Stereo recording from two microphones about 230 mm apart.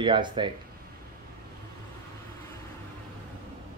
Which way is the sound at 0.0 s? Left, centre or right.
Right.